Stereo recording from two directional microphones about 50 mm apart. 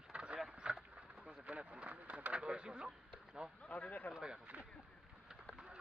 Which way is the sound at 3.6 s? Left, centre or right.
Left.